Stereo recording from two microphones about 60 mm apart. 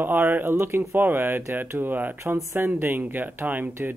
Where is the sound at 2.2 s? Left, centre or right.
Right.